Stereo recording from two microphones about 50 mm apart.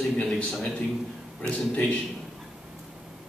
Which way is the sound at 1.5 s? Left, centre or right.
Left.